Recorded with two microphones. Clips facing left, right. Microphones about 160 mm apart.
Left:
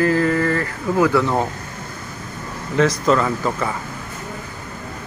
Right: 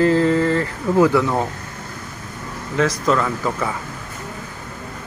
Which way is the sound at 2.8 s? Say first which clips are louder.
Left 2 dB; centre (ahead or behind).